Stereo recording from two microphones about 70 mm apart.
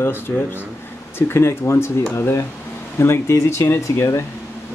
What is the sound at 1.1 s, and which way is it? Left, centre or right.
Speech, left.